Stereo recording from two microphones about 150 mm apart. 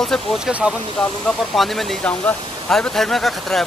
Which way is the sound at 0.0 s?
5° left (ahead or behind).